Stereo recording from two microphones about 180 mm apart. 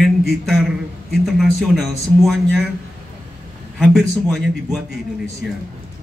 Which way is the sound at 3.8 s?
Centre (ahead or behind).